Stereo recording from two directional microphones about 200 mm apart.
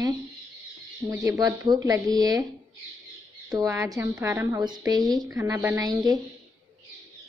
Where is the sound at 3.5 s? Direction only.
15° right (ahead or behind).